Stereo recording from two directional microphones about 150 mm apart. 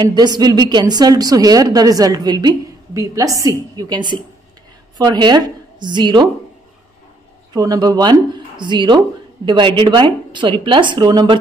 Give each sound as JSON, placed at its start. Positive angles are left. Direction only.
{"t": 0.0, "sound": "a woman's voice", "side_deg": -25}
{"t": 7.5, "sound": "a woman's voice", "side_deg": -25}